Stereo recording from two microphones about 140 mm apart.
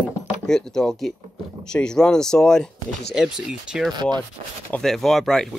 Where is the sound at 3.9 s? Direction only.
30° right (ahead or behind).